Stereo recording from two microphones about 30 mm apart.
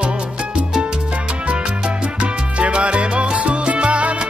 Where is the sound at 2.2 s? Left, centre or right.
Right.